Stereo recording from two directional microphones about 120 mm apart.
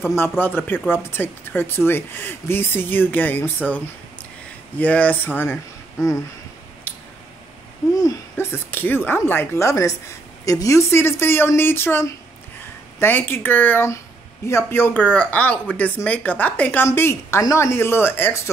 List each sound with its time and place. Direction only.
0.2 s speech: 15° left (ahead or behind)
6.9 s a sound: 15° left (ahead or behind)
7.9 s speech: 30° left (ahead or behind)